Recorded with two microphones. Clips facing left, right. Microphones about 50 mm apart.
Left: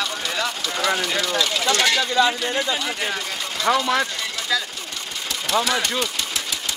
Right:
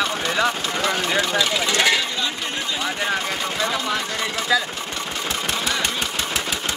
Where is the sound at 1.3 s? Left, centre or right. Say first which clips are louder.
Even; centre.